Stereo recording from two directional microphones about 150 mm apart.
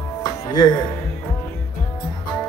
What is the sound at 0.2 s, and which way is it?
Music, 30° left (ahead or behind).